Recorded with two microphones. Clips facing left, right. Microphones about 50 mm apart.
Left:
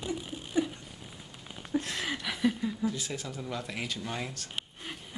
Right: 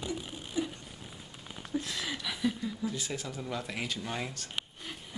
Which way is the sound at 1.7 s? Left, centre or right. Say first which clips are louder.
Left 3 dB; left.